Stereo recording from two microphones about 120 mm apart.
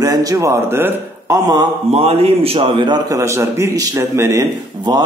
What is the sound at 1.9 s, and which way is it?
A man's voice, 55° right (ahead or behind).